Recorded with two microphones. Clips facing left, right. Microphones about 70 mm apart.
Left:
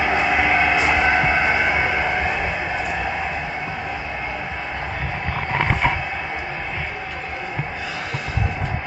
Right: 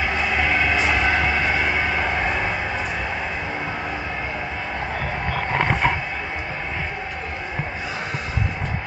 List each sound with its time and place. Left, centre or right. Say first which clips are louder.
0.1 s train: left 4 dB; centre